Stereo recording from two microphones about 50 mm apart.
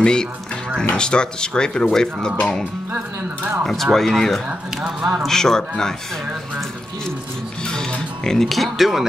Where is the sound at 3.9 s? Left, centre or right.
Centre.